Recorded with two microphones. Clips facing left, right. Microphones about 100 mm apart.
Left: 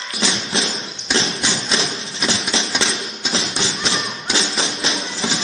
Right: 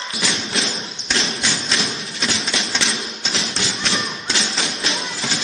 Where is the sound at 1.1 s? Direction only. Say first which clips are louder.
Left 2 dB; 20° left (ahead or behind).